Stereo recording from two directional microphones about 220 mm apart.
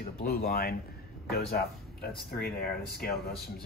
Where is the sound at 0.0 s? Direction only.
45° left (ahead or behind).